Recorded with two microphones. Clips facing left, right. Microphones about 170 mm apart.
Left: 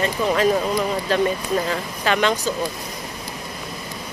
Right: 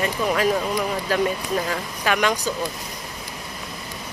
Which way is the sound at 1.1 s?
10° right (ahead or behind).